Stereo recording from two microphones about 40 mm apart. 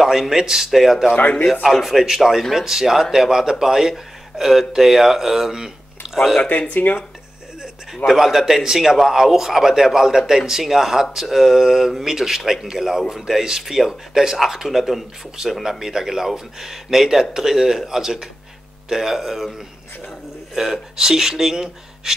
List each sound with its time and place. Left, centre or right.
0.0 s a man's voice: centre
6.0 s a sound: right
6.7 s speech: left
7.9 s a man's voice: centre
20.5 s a man's voice: centre